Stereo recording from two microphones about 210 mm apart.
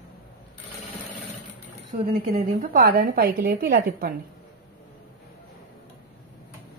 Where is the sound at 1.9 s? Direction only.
50° right (ahead or behind).